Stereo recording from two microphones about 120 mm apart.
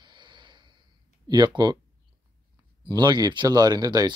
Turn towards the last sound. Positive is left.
turn(degrees=-35)  # may be behind; listen again after turning